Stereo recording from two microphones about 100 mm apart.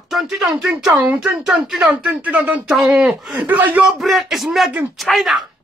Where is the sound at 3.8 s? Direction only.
Centre (ahead or behind).